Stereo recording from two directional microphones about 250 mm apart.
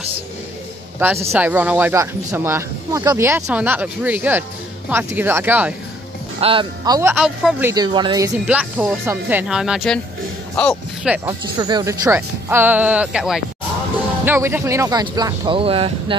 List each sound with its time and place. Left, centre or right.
0.9 s speech: centre
6.4 s speech: centre
8.5 s a man's voice: centre
11.2 s speech: centre